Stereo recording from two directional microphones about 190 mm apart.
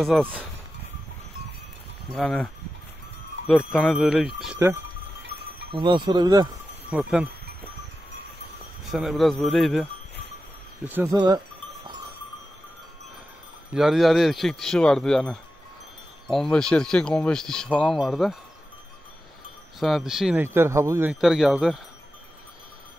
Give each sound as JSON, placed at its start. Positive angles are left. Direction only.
{"t": 0.0, "sound": "speech", "side_deg": -5}
{"t": 2.1, "sound": "speech", "side_deg": 5}
{"t": 5.7, "sound": "speech", "side_deg": -25}
{"t": 6.9, "sound": "speech", "side_deg": 0}
{"t": 8.9, "sound": "speech", "side_deg": 0}
{"t": 10.9, "sound": "speech", "side_deg": -10}
{"t": 11.1, "sound": "livestock", "side_deg": -20}
{"t": 13.7, "sound": "speech", "side_deg": 0}
{"t": 19.8, "sound": "speech", "side_deg": 0}